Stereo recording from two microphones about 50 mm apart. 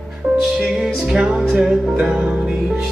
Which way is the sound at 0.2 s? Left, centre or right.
Centre.